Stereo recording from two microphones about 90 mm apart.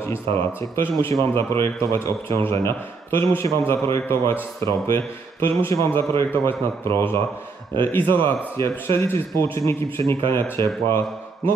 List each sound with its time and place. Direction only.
0.0 s a man's voice: 30° left (ahead or behind)